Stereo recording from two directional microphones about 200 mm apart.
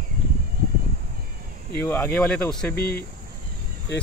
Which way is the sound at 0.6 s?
50° right (ahead or behind).